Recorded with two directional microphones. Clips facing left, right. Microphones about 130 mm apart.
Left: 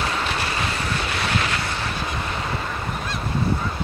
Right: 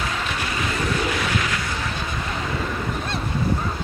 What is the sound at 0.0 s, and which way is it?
Vehicle, 30° left (ahead or behind).